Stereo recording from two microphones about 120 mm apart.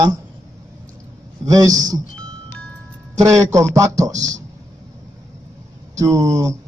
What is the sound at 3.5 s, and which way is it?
Speech, 25° right (ahead or behind).